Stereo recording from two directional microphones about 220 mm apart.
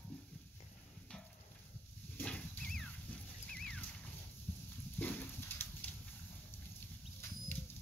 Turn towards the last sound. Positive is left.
turn(degrees=10)  # may be behind; listen again after turning